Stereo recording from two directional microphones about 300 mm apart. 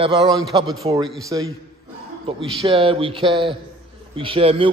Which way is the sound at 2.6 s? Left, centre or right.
Centre.